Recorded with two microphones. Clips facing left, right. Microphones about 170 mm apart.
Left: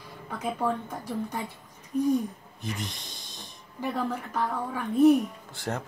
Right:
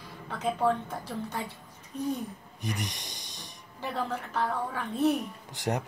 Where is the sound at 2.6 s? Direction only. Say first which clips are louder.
Even; 15° right (ahead or behind).